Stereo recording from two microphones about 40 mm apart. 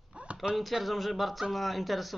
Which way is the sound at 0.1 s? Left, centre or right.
Right.